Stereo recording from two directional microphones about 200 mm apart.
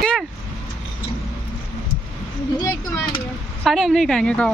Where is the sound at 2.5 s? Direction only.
20° left (ahead or behind).